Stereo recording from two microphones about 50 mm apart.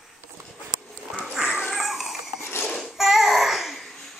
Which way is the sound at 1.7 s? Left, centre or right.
Centre.